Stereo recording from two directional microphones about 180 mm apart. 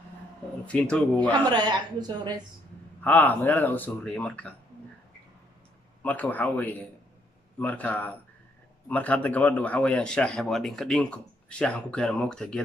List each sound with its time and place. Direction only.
0.7 s speech: 5° left (ahead or behind)
1.3 s a woman's voice: 25° right (ahead or behind)
3.0 s speech: 10° left (ahead or behind)
6.0 s speech: 10° left (ahead or behind)